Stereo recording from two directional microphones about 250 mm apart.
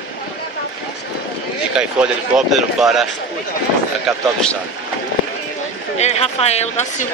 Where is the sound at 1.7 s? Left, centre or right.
Centre.